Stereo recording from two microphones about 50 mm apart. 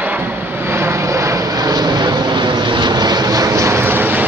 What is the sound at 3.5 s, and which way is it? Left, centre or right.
Vehicle, right.